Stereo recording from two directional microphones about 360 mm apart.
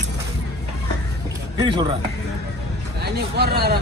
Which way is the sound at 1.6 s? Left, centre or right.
Centre.